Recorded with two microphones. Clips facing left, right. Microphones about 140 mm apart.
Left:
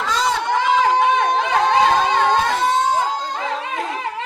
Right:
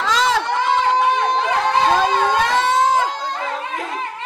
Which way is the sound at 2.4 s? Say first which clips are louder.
Right 1 dB; 90° right.